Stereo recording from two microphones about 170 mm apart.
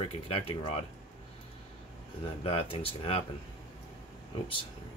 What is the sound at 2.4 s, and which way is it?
Speech, 35° left (ahead or behind).